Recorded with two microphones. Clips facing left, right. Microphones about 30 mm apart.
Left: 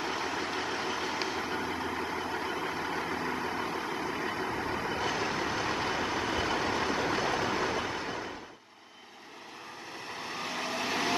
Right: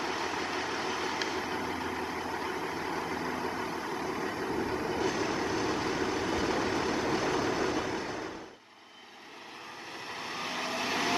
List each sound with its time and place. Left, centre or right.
0.0 s vehicle: centre
10.2 s vehicle: centre